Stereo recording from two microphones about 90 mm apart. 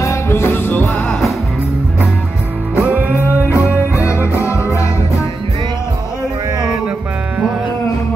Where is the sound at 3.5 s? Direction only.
30° left (ahead or behind).